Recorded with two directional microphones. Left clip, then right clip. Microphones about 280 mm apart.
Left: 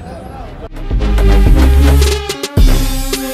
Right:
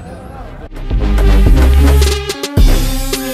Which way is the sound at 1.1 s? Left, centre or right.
Centre.